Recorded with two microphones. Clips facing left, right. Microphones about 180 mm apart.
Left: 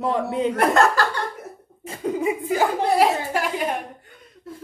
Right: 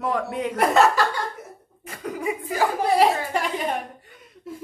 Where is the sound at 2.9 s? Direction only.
Centre (ahead or behind).